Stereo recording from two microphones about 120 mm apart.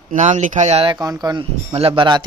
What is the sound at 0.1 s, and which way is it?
Speech, 90° right.